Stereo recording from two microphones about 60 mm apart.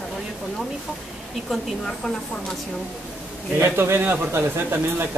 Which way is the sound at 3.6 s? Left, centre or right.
Right.